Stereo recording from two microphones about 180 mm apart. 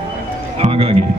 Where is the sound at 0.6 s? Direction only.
35° right (ahead or behind).